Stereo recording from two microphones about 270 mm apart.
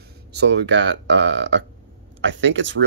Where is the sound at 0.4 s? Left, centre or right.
Right.